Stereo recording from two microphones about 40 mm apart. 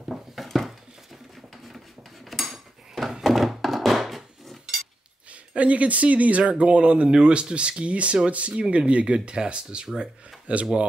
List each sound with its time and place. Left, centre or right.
0.4 s a sound: centre
2.2 s dishes: centre
3.3 s thunk: centre
5.3 s speech: right